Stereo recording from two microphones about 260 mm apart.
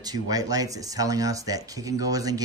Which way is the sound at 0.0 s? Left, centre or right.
Centre.